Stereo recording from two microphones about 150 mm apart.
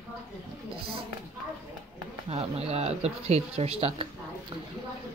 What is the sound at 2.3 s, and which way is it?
Speech, 45° right (ahead or behind).